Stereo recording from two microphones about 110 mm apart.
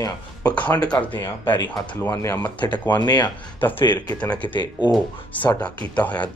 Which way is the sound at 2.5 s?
45° left (ahead or behind).